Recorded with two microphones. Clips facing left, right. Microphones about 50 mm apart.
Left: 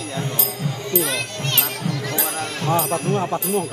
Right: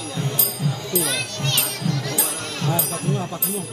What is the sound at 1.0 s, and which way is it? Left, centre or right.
Speech, centre.